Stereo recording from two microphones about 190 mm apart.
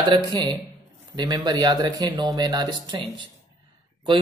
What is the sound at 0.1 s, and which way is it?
Speech, 25° right (ahead or behind).